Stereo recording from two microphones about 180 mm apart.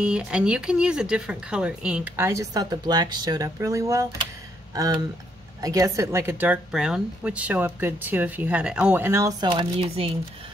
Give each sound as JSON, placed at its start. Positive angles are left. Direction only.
{"t": 0.0, "sound": "speech", "side_deg": -5}